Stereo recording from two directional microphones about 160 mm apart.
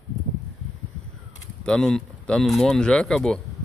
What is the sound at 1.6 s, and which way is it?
Speech, 5° left (ahead or behind).